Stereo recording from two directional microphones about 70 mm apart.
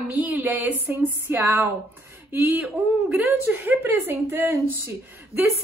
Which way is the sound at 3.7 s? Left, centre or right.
Right.